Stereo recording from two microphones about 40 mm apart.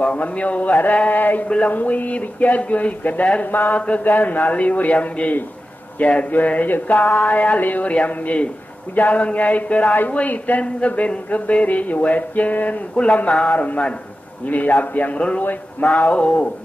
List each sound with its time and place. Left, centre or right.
0.0 s speech: left
3.7 s speech: left
4.0 s speech: left
6.3 s speech: left
8.9 s a man's voice: left
15.1 s speech: left